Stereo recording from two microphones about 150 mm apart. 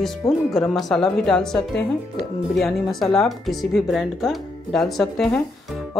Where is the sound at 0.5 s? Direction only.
Centre (ahead or behind).